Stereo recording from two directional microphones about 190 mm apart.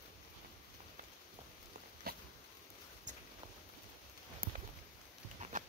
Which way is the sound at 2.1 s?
50° right (ahead or behind).